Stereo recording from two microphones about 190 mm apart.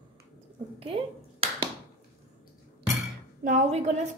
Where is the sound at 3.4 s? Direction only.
35° right (ahead or behind).